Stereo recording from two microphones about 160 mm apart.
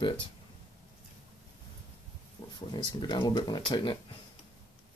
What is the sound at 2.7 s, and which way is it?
Speech, 30° left (ahead or behind).